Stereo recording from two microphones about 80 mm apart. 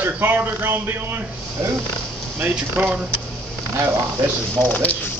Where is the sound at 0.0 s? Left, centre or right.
Right.